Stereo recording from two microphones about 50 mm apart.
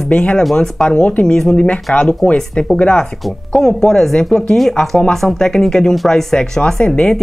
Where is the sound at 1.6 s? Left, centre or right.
Left.